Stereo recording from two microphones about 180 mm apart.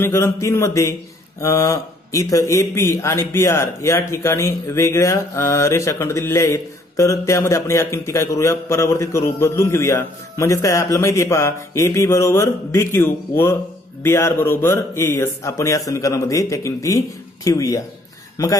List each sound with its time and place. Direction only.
0.0 s speech: 15° left (ahead or behind)